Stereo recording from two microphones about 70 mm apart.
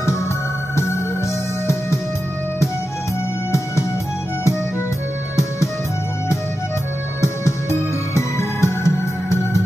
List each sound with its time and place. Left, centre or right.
0.7 s music: left
7.2 s music: left